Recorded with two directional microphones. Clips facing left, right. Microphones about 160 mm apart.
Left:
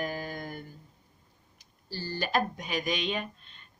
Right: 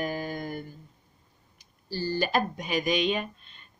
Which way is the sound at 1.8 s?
5° right (ahead or behind).